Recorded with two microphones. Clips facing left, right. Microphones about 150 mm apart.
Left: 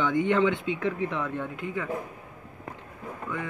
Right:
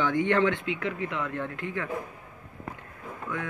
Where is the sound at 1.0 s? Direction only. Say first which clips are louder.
Left 2 dB; 15° left (ahead or behind).